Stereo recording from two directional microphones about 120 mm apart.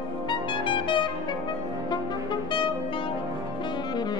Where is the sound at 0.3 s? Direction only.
45° left (ahead or behind).